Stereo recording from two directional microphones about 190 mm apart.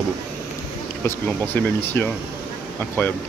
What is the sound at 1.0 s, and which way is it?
Speech, 10° left (ahead or behind).